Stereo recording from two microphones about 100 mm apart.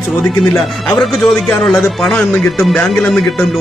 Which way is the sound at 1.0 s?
5° left (ahead or behind).